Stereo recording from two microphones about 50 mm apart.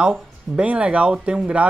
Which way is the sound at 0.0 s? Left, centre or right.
Centre.